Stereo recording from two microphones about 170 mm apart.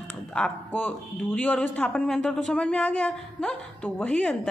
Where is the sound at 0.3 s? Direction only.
10° left (ahead or behind).